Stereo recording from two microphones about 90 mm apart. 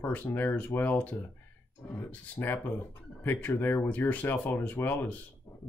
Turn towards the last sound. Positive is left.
turn(degrees=20)  # may be behind; listen again after turning